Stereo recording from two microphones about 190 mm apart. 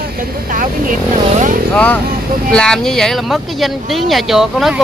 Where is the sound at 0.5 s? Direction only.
45° right (ahead or behind).